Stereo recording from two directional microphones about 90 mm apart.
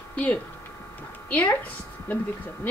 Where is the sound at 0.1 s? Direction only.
15° left (ahead or behind).